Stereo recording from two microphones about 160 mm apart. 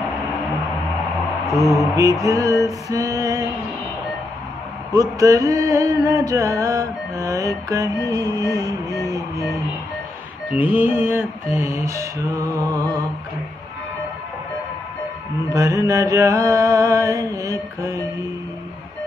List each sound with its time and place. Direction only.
1.5 s mantra: centre (ahead or behind)
2.0 s music: 20° right (ahead or behind)
5.2 s music: 20° right (ahead or behind)
8.4 s music: 20° left (ahead or behind)
10.5 s mantra: 10° right (ahead or behind)
15.5 s music: 20° right (ahead or behind)